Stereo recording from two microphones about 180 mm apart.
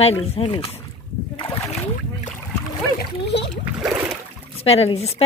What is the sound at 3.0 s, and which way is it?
Splash, 65° left (ahead or behind).